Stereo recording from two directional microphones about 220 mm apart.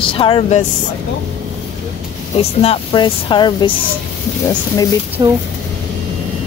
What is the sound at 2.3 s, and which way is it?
Speech, 25° left (ahead or behind).